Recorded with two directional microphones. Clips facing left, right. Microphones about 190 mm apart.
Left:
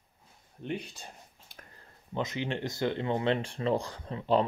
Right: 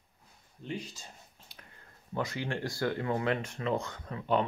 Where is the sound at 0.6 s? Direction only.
60° left (ahead or behind).